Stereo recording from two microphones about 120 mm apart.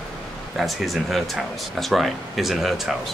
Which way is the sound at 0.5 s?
Centre (ahead or behind).